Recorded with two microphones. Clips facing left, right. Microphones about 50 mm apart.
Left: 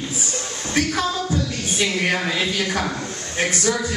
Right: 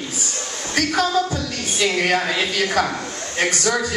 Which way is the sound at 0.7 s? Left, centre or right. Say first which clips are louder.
Right 3 dB; right.